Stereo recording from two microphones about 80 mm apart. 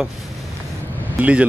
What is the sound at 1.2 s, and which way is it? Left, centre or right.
Speech, centre.